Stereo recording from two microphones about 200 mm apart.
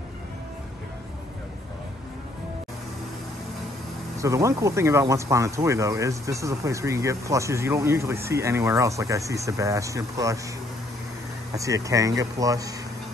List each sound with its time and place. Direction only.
4.2 s speech: 15° right (ahead or behind)
11.5 s speech: 15° right (ahead or behind)